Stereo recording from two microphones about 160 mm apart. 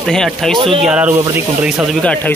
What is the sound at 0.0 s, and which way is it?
Speech, 5° left (ahead or behind).